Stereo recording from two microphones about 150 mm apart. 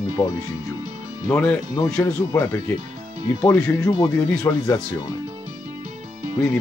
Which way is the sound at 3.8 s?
25° left (ahead or behind).